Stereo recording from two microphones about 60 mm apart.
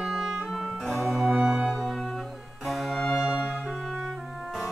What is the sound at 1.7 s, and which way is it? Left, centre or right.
Music, centre.